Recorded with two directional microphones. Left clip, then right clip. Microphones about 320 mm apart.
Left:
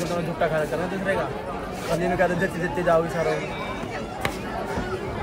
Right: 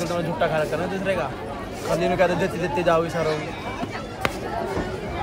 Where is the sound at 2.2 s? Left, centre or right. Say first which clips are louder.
Right 2 dB; centre.